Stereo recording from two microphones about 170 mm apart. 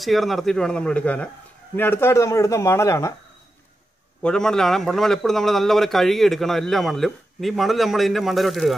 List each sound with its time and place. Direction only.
0.0 s a man's voice: centre (ahead or behind); by 3.2 s 15° left (ahead or behind)
4.2 s a man's voice: 5° left (ahead or behind)